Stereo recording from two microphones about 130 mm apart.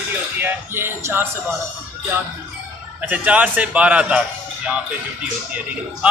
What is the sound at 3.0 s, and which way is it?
A man's voice, 10° right (ahead or behind).